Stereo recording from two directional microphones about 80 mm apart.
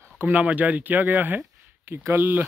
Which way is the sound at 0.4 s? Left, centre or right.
Centre.